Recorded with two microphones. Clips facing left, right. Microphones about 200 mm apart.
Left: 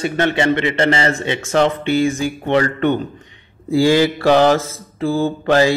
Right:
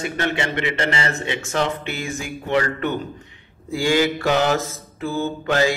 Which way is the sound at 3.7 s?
35° left (ahead or behind).